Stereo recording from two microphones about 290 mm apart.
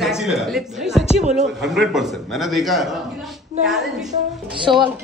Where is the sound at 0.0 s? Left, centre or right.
Centre.